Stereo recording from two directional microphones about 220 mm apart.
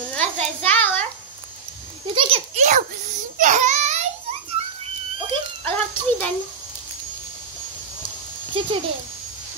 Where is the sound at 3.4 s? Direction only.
35° right (ahead or behind).